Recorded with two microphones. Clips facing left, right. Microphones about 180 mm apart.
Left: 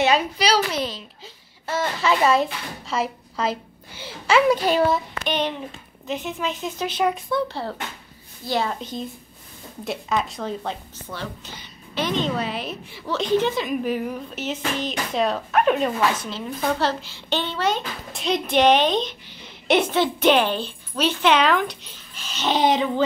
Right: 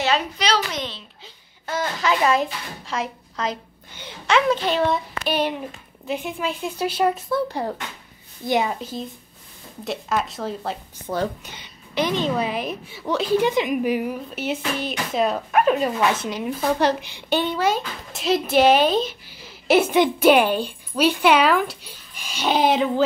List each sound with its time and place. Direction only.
0.0 s a woman's voice: 10° left (ahead or behind)
5.2 s a woman's voice: 10° right (ahead or behind)
8.5 s a woman's voice: 20° right (ahead or behind)
9.8 s a woman's voice: centre (ahead or behind)
11.1 s speech: 35° right (ahead or behind)
11.4 s a woman's voice: 15° right (ahead or behind)
16.0 s a woman's voice: 15° right (ahead or behind)